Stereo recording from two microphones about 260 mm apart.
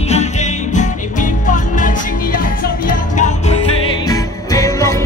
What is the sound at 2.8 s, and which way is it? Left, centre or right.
Music, left.